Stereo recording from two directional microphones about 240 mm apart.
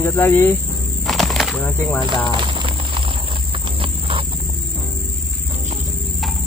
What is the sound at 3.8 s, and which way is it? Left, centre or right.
Horse, right.